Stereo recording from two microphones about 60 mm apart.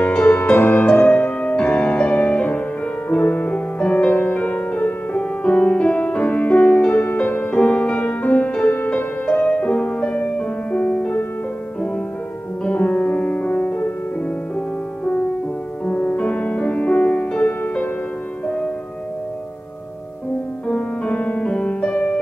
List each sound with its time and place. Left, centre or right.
0.0 s music: left
12.6 s music: left
15.8 s music: left
20.6 s music: left